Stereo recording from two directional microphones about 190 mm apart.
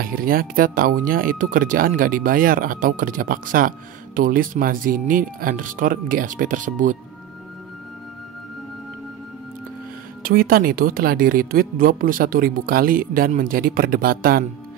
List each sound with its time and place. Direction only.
0.0 s speech: 50° right (ahead or behind)
10.2 s speech: 50° right (ahead or behind)